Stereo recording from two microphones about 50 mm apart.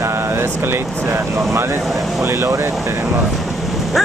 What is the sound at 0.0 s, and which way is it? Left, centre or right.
Speech, right.